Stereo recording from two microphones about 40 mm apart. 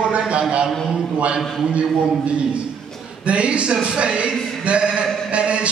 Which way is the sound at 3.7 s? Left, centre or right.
Centre.